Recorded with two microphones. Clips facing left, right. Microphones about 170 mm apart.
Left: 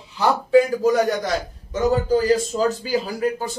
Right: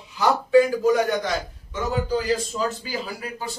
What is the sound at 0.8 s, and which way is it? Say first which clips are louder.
Speech: left 2 dB; 40° left (ahead or behind).